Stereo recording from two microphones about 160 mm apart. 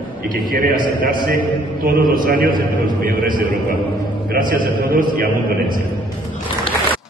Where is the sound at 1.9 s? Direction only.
65° right (ahead or behind).